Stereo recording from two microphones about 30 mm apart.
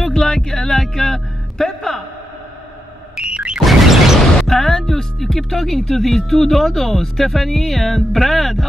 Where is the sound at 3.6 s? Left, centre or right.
Centre.